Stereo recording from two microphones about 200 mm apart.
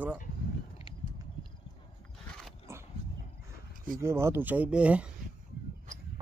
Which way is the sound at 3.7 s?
45° right (ahead or behind).